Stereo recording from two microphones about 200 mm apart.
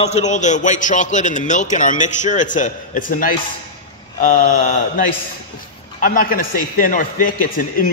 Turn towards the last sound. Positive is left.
turn(degrees=45)  # may be behind; listen again after turning